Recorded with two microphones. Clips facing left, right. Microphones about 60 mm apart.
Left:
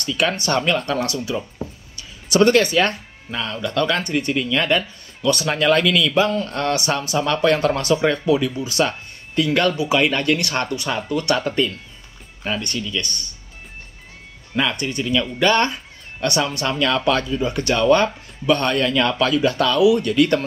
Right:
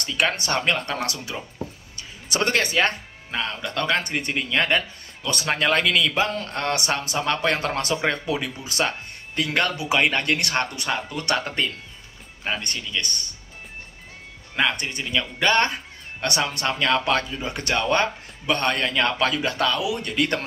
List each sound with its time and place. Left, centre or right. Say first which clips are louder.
0.0 s speech: left 2 dB; right
0.5 s speech: left 4 dB; right
0.9 s speech: left 6 dB; right
2.0 s speech: left 9 dB; right
14.5 s speech: left 2 dB; right
17.8 s speech: left 9 dB; right